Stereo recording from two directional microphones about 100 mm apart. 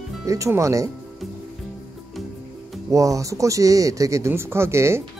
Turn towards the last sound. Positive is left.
turn(degrees=-25)  # may be behind; listen again after turning